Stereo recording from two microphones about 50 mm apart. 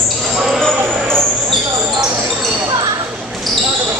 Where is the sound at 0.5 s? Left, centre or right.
Centre.